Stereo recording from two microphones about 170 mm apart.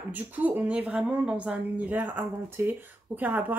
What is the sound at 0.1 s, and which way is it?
Speech, 10° right (ahead or behind).